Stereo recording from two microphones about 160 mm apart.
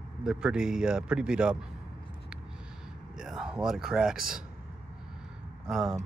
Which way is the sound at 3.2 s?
5° right (ahead or behind).